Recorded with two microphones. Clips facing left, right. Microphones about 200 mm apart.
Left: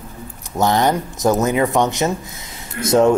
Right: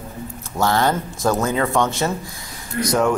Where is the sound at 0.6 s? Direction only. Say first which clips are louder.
Left 2 dB; 20° left (ahead or behind).